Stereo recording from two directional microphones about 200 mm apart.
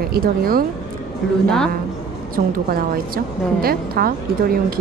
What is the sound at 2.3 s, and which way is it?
Speech, 45° right (ahead or behind).